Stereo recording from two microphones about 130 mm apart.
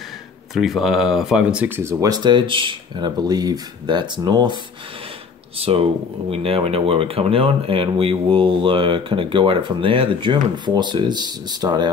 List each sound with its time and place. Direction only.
0.6 s speech: centre (ahead or behind)
1.8 s speech: 20° right (ahead or behind)
5.6 s speech: 45° right (ahead or behind)